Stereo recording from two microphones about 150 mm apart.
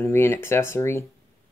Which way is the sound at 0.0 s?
15° left (ahead or behind).